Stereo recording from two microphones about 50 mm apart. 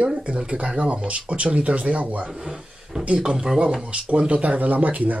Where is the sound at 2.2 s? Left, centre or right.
Centre.